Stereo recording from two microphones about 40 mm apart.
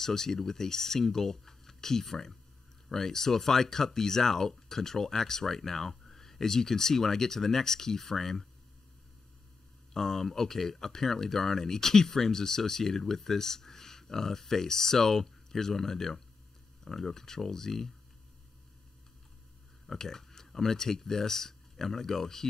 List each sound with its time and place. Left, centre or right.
0.0 s speech: centre
9.9 s speech: centre
20.0 s speech: centre